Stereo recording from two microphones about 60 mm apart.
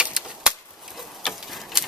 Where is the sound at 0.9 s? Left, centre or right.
Centre.